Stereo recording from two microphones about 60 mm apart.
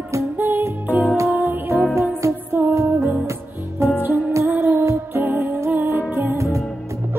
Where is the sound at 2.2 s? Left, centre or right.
Right.